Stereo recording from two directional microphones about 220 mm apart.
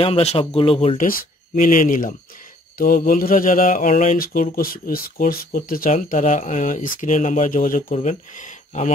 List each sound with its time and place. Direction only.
0.0 s speech: 30° left (ahead or behind)
0.9 s speech: 40° left (ahead or behind)